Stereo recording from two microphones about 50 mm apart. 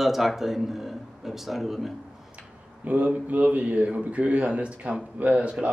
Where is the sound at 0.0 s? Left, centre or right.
Centre.